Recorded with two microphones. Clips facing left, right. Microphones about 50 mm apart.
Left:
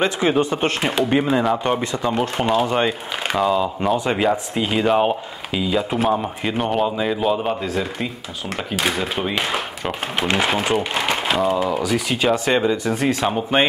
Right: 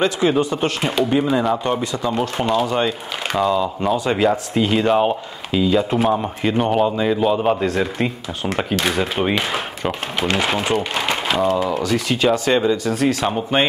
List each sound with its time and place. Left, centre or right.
0.4 s speech: left
0.8 s speech: centre
3.3 s speech: centre
8.7 s speech: centre
10.2 s speech: centre
13.2 s speech: centre